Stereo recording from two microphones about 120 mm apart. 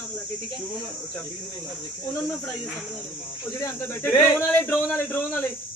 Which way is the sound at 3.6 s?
20° left (ahead or behind).